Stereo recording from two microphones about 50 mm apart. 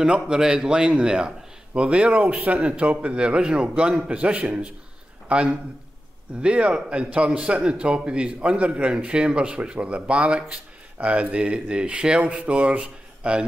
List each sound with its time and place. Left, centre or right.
0.0 s a man's voice: centre